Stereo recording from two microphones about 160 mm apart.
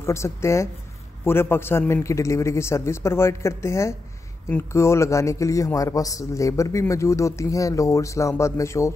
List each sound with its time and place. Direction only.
0.0 s a man's voice: 15° left (ahead or behind)